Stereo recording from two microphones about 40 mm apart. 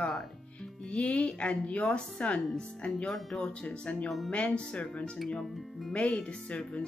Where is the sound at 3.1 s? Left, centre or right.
Centre.